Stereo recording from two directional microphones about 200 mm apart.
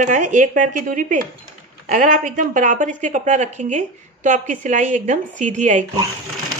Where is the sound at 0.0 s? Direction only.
40° right (ahead or behind).